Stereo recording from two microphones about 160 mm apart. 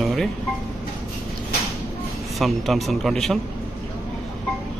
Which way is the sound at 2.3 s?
Centre (ahead or behind).